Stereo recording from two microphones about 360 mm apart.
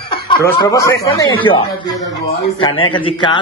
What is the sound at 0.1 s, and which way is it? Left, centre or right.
Speech, centre.